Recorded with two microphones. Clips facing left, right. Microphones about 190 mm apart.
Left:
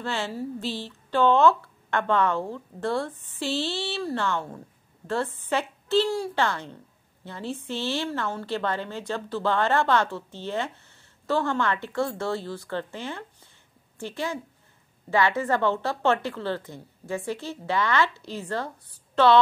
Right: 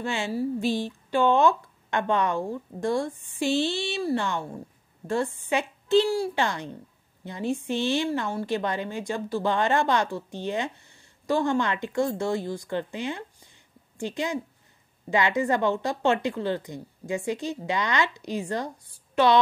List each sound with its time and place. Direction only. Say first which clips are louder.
0.0 s a woman's voice: right 3 dB; 15° right (ahead or behind)